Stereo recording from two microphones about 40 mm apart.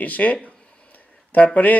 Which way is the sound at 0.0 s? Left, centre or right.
Left.